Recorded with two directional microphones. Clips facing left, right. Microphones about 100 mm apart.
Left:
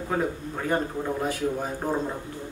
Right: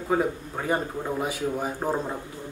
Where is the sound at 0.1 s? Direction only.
10° right (ahead or behind).